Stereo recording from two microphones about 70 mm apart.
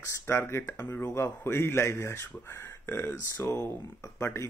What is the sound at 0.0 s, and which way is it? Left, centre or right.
Speech, left.